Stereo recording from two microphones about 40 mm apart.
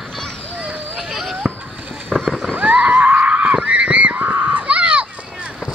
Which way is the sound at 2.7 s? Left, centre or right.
Right.